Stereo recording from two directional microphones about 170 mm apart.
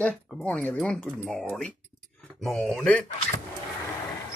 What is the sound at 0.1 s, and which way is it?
Speech, centre (ahead or behind).